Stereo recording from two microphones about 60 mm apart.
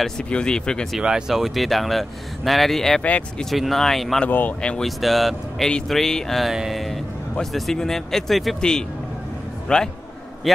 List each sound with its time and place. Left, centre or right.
0.0 s speech: centre
1.0 s speech: centre
3.0 s speech: left
3.3 s speech: centre
4.3 s speech: left
4.6 s speech: centre
4.8 s speech: centre
10.4 s speech: centre